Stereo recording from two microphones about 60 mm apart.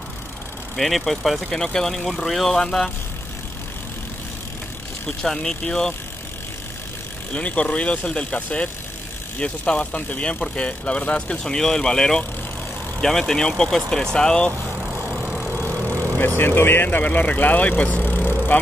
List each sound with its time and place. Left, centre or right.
0.7 s speech: centre
1.6 s speech: centre
5.0 s speech: centre
7.3 s speech: centre
16.3 s speech: left